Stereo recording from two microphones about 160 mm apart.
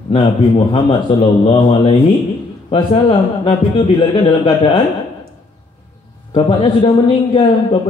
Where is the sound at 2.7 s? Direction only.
35° left (ahead or behind).